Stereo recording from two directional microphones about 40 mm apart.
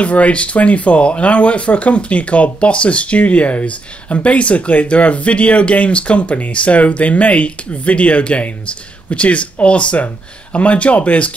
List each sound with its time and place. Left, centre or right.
0.0 s speech: left